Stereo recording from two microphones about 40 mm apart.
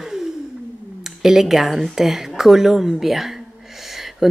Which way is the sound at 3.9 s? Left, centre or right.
Centre.